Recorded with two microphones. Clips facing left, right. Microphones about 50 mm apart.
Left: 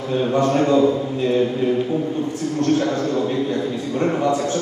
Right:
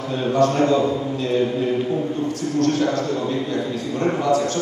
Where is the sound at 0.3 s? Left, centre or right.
Left.